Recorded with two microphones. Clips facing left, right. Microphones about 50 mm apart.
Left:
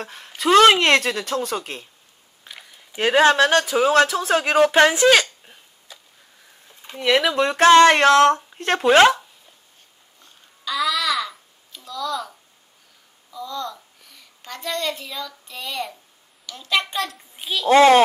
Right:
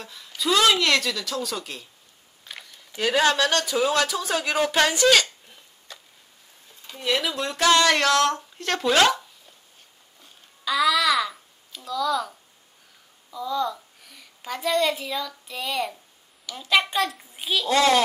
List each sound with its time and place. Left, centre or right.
0.0 s speech: left
2.6 s a sound: centre
3.0 s speech: left
5.9 s a sound: centre
7.0 s speech: left
10.2 s babbling: centre
13.3 s a child's voice: centre
17.6 s speech: left